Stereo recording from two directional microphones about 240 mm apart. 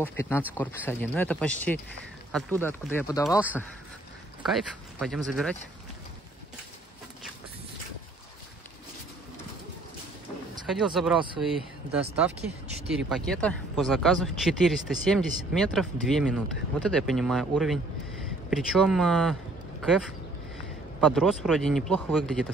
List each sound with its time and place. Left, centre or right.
0.0 s speech: centre
3.3 s speech: centre
10.7 s speech: centre
11.1 s speech: right
11.4 s speech: centre
21.0 s speech: centre